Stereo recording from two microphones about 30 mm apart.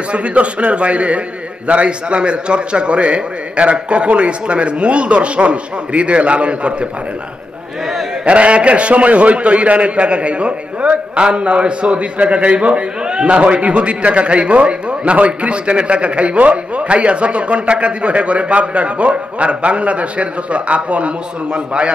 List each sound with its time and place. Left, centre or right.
0.1 s a man's voice: right
8.3 s a man's voice: right
13.0 s a sound: right
13.4 s a man's voice: right
21.5 s a man's voice: right